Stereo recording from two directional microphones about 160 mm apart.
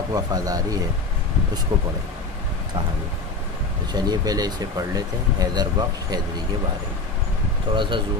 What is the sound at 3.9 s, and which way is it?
Speech, 25° right (ahead or behind).